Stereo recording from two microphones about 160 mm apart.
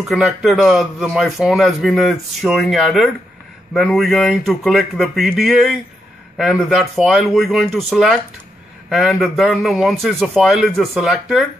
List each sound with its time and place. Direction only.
0.0 s speech: 5° right (ahead or behind)